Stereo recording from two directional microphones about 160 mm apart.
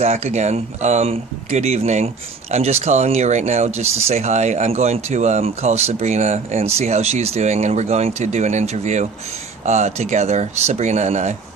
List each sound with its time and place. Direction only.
0.0 s speech: 45° right (ahead or behind)